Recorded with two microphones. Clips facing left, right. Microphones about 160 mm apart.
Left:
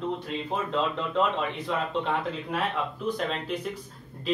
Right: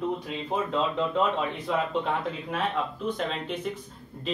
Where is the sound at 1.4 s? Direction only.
5° right (ahead or behind).